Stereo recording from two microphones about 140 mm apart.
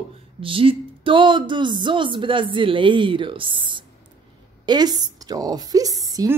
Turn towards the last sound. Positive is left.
turn(degrees=-25)  # may be behind; listen again after turning